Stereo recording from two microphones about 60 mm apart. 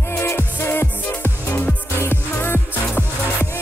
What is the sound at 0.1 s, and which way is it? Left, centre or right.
Music, left.